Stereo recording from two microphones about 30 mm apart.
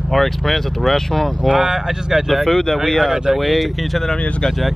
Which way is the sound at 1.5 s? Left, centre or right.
Centre.